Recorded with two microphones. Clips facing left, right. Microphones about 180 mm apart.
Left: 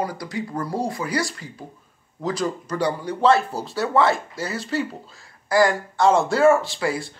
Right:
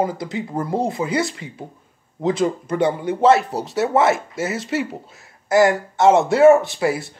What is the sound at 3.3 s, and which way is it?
Speech, 70° right (ahead or behind).